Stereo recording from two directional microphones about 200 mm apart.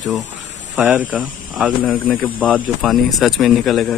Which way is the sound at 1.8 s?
5° left (ahead or behind).